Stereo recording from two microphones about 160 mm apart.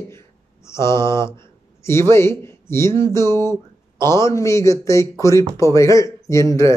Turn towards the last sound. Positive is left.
turn(degrees=20)  # may be behind; listen again after turning